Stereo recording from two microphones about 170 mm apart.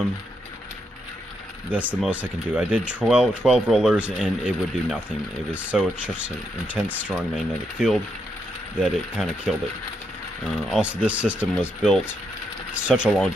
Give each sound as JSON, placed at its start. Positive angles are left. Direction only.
{"t": 1.7, "sound": "speech", "side_deg": -10}
{"t": 10.7, "sound": "speech", "side_deg": -5}
{"t": 12.7, "sound": "speech", "side_deg": -5}